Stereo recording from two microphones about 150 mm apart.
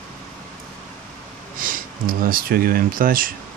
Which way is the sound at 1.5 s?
65° right (ahead or behind).